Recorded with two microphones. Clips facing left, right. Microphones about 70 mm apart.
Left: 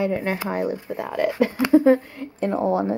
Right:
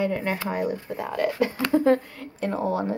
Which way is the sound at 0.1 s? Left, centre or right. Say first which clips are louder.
Left 2 dB; centre.